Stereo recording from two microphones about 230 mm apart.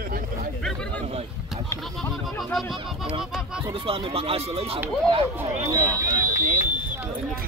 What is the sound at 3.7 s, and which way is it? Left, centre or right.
Speech, right.